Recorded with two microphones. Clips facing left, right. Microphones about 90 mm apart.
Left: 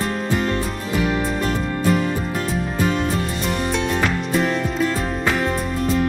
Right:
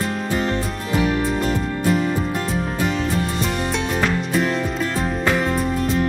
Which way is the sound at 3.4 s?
Centre (ahead or behind).